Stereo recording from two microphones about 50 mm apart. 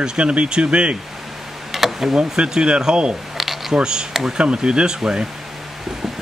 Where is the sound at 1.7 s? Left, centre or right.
Centre.